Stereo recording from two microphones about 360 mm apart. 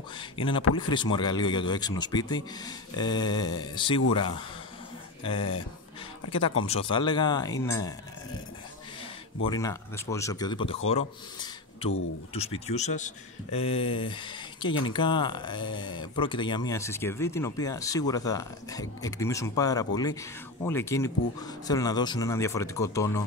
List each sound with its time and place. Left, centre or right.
0.2 s speech: centre
5.2 s speech: centre
6.6 s speech: centre
9.4 s speech: centre